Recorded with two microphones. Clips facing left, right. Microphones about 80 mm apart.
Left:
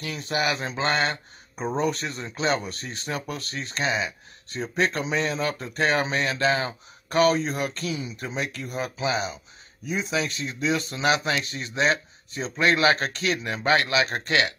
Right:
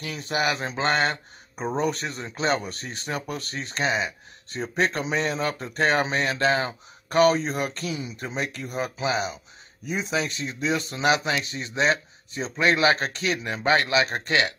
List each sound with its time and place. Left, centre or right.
0.0 s a man's voice: centre
7.8 s speech: centre
8.2 s a man's voice: centre